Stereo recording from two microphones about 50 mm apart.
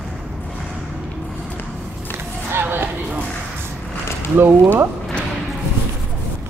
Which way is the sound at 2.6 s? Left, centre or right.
Right.